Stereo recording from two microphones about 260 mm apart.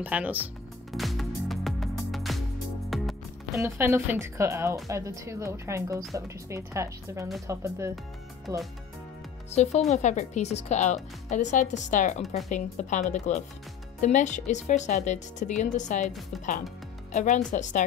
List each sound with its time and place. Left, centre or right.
0.0 s speech: centre
0.9 s music: centre
3.5 s speech: centre
9.5 s speech: left
17.1 s speech: left